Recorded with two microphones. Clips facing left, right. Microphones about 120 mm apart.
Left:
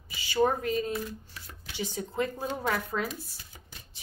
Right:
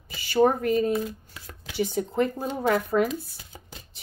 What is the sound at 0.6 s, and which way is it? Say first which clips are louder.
Speech: right 7 dB; 55° right (ahead or behind).